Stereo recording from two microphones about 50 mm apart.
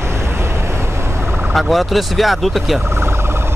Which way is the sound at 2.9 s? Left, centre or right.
Right.